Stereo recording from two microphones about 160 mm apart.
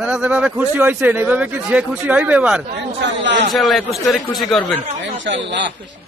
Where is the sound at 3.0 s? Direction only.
90° right.